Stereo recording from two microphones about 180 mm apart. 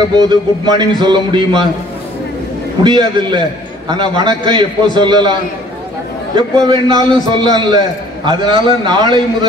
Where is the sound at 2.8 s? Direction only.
25° right (ahead or behind).